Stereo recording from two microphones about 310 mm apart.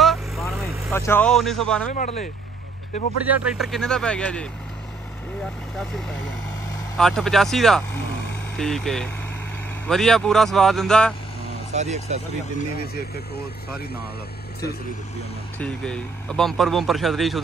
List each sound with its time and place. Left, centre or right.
0.0 s vehicle: centre
1.9 s speech: left
3.3 s speech: centre
5.8 s speech: centre
11.7 s speech: right
15.6 s speech: centre